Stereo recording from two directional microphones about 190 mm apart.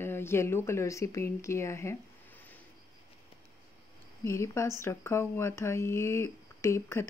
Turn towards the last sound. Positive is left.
turn(degrees=15)  # may be behind; listen again after turning